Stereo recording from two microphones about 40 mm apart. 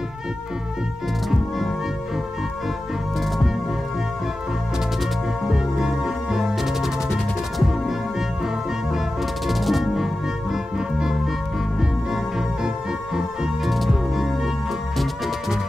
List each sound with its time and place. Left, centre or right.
5.4 s music: centre
9.5 s music: centre
12.6 s music: centre